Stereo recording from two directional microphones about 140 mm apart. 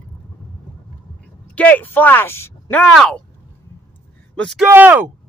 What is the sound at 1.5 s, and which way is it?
Speech, 10° left (ahead or behind).